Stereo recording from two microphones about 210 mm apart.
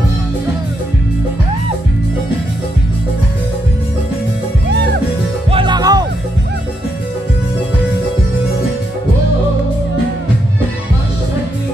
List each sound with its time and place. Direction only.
5.5 s music: 25° right (ahead or behind)